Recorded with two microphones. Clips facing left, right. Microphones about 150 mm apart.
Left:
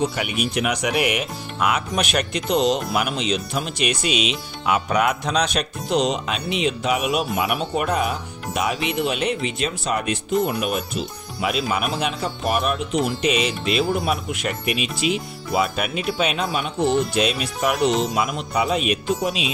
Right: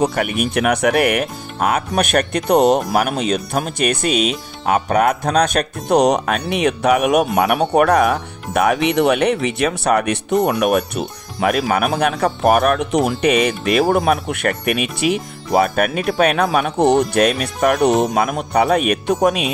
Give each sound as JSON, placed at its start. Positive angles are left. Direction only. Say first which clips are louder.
{"t": 0.0, "sound": "speech", "louder": "right 5 dB", "side_deg": -50}